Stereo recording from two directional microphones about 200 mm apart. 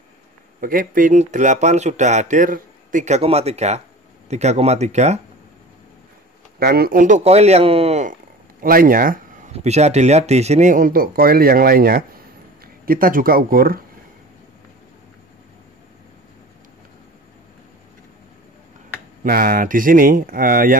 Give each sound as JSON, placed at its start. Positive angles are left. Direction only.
{"t": 0.6, "sound": "speech", "side_deg": -45}
{"t": 6.6, "sound": "speech", "side_deg": -50}
{"t": 9.5, "sound": "speech", "side_deg": -35}
{"t": 19.2, "sound": "speech", "side_deg": -45}